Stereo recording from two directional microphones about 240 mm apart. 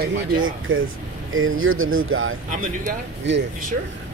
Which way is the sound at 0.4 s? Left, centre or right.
Right.